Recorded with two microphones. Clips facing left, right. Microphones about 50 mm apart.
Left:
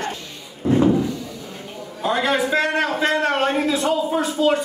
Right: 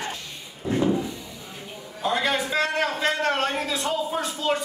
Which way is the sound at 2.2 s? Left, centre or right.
Centre.